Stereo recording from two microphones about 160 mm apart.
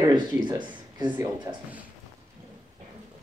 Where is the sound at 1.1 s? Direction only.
15° right (ahead or behind).